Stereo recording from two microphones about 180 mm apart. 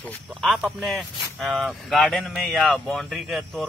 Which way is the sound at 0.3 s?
Centre (ahead or behind).